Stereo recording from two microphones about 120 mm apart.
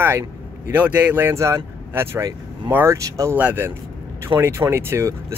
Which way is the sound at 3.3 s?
15° right (ahead or behind).